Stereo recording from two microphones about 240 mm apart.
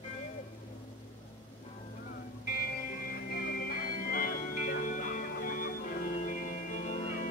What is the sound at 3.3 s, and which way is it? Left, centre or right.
Music, left.